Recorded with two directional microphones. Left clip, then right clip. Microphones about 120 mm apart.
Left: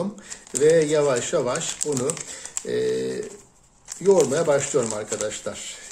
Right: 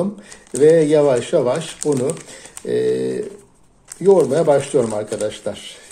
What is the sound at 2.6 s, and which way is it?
Bird, 20° right (ahead or behind).